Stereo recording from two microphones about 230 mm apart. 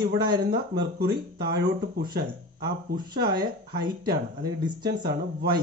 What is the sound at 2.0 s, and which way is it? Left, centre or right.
Speech, centre.